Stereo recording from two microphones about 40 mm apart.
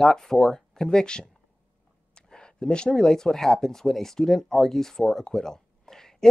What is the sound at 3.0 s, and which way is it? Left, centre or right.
Speech, centre.